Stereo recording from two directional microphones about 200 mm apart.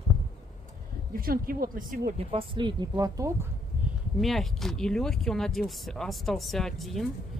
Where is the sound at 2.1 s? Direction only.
25° right (ahead or behind).